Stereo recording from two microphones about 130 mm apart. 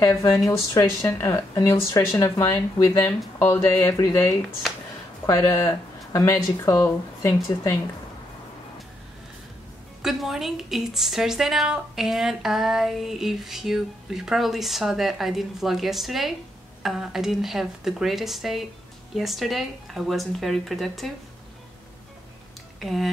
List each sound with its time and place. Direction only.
0.0 s speech: 20° left (ahead or behind)
10.0 s a woman's voice: 5° right (ahead or behind)
22.8 s a woman's voice: centre (ahead or behind)